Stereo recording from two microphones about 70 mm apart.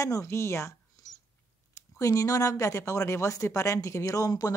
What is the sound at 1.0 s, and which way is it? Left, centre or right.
Whispering, left.